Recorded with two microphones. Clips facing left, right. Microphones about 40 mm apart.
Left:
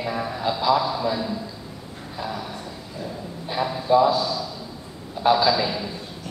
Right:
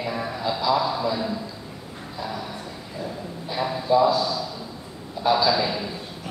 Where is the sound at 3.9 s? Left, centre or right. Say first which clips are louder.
Left 2 dB; left.